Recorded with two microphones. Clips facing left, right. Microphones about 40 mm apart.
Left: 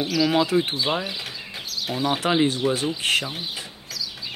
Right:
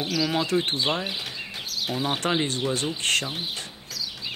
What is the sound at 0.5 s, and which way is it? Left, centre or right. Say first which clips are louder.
Speech: left 3 dB; centre.